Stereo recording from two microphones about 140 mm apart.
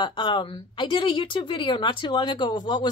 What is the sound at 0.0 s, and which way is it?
A woman's voice, 35° left (ahead or behind).